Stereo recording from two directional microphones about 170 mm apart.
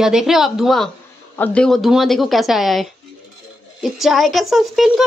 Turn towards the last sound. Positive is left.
turn(degrees=0)  # may be behind; listen again after turning